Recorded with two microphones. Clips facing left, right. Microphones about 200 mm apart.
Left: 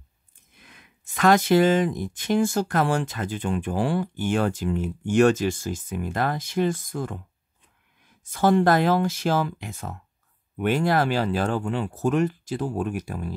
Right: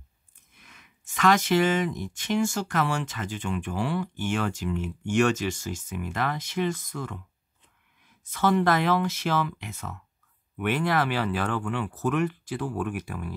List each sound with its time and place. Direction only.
0.6 s speech: 35° left (ahead or behind)
8.3 s speech: 35° left (ahead or behind)
11.6 s speech: 30° left (ahead or behind)